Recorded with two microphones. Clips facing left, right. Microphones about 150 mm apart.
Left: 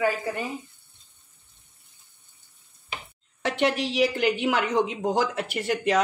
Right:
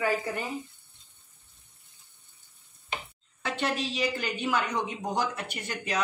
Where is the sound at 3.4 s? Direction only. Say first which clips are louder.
Left 6 dB; 75° left (ahead or behind).